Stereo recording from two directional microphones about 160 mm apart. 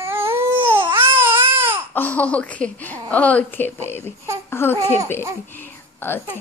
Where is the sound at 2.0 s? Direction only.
10° left (ahead or behind).